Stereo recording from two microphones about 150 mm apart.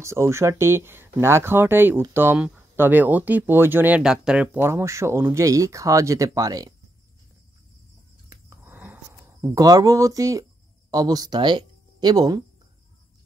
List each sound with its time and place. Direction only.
0.0 s speech: 20° right (ahead or behind)
4.6 s speech: 15° right (ahead or behind)
8.3 s a sound: 20° right (ahead or behind)
9.6 s speech: 25° right (ahead or behind)